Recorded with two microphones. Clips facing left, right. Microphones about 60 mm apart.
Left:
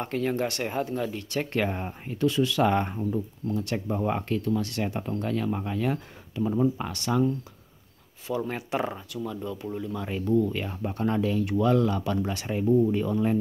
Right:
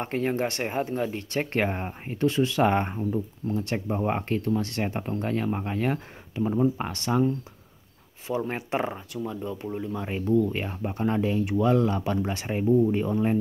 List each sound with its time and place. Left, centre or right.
0.0 s speech: right
3.0 s speech: centre
3.5 s speech: right
8.5 s speech: right
12.6 s speech: centre
12.9 s speech: right